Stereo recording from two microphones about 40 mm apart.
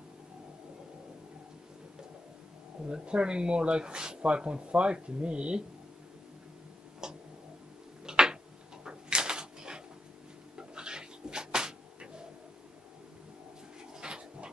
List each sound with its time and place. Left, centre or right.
2.9 s speech: right
7.0 s tick-tock: centre
8.0 s a sound: centre
10.5 s cat: right
13.9 s dog: right